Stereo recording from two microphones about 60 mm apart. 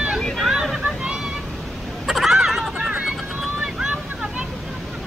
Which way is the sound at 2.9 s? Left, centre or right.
Centre.